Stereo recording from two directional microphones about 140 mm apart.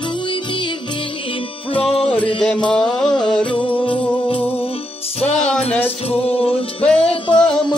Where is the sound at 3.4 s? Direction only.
35° left (ahead or behind).